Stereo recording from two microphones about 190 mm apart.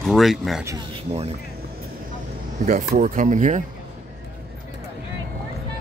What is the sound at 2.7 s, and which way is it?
Speech, 40° right (ahead or behind).